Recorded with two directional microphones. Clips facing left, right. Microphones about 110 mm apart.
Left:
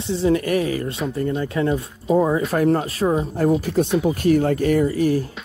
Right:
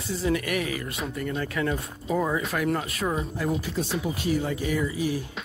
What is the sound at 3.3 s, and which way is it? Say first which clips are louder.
Speech: left 9 dB; 50° left (ahead or behind).